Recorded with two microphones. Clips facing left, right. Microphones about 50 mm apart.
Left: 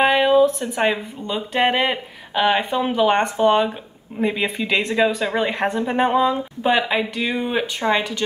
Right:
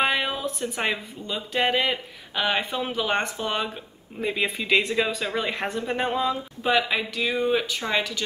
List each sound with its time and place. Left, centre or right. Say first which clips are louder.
0.0 s speech: left 10 dB; centre
5.2 s speech: left 6 dB; centre